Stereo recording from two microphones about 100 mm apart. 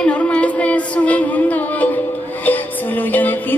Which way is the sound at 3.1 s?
20° left (ahead or behind).